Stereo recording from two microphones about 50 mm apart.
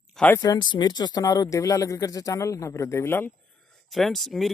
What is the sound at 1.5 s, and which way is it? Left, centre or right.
Speech, left.